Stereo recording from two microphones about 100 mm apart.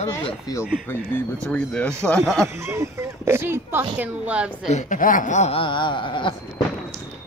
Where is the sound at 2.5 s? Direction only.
25° right (ahead or behind).